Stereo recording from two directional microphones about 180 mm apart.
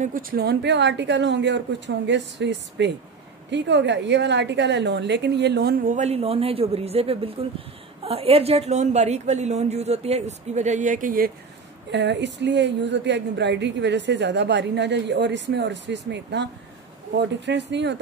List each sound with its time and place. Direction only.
0.0 s a woman's voice: 50° right (ahead or behind); by 5.8 s 65° right (ahead or behind)
5.9 s a woman's voice: 40° right (ahead or behind)
11.9 s a woman's voice: 75° right (ahead or behind)
17.5 s a woman's voice: 75° right (ahead or behind)